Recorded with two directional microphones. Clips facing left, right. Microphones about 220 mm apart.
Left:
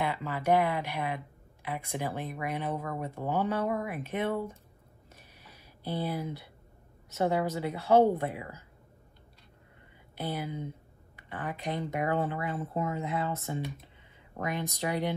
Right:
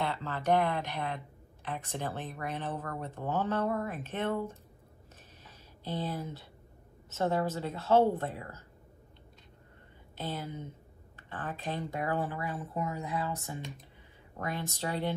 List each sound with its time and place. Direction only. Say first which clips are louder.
0.0 s speech: left 2 dB; 10° left (ahead or behind)
5.1 s a sound: left 1 dB; 10° left (ahead or behind)
7.1 s speech: left 2 dB; 10° left (ahead or behind)
10.1 s speech: left 3 dB; 10° left (ahead or behind)